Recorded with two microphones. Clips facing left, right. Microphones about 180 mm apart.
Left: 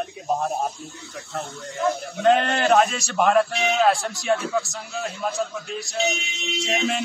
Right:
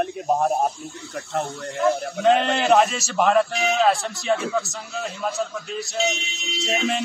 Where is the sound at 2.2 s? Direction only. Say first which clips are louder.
Left 1 dB; centre (ahead or behind).